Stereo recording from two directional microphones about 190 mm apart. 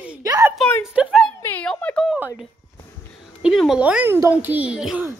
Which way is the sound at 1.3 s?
10° left (ahead or behind).